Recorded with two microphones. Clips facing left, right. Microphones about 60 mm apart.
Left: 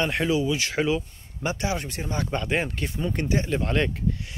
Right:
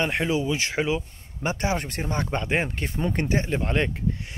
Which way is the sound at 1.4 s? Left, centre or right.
Right.